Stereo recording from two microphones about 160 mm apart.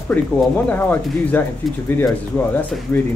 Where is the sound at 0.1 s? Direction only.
10° left (ahead or behind).